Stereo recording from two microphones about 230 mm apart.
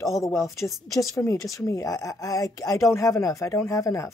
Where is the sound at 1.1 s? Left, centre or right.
Centre.